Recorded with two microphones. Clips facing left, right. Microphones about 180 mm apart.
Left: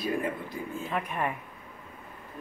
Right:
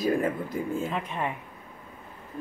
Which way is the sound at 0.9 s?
20° right (ahead or behind).